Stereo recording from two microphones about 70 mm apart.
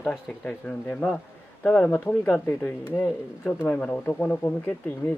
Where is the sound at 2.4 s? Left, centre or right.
Left.